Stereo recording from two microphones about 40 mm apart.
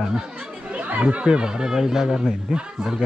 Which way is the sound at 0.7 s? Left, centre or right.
Right.